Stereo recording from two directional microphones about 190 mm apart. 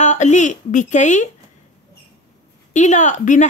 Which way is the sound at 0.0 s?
40° left (ahead or behind).